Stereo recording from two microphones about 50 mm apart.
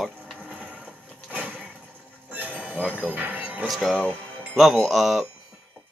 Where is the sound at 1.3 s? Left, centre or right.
Right.